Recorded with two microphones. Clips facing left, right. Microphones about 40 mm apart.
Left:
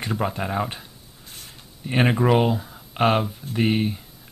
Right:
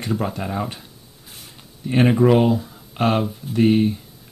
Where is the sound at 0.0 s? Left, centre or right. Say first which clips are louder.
Right 1 dB; centre.